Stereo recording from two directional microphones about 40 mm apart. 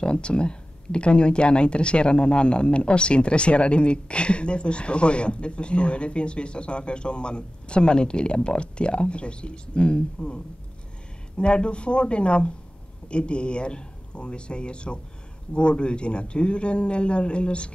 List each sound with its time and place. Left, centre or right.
0.0 s speech: left